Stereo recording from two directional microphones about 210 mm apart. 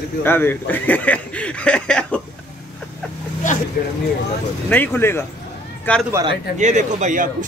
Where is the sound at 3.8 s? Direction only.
45° left (ahead or behind).